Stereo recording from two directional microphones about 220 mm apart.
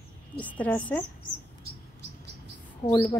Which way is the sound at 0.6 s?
5° left (ahead or behind).